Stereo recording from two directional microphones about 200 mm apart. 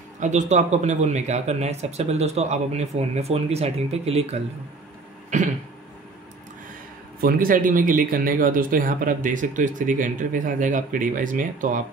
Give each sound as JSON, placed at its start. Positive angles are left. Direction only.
{"t": 0.2, "sound": "speech", "side_deg": -35}
{"t": 7.2, "sound": "speech", "side_deg": -45}